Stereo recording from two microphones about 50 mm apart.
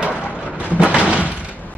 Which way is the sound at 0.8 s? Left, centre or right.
Right.